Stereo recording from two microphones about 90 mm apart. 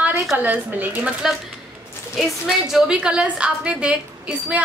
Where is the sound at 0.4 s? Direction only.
20° right (ahead or behind).